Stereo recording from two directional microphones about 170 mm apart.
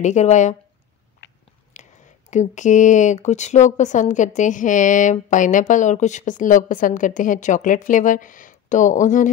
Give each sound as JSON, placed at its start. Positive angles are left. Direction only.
{"t": 0.0, "sound": "speech", "side_deg": 45}
{"t": 1.2, "sound": "biting", "side_deg": 90}
{"t": 1.7, "sound": "speech", "side_deg": 45}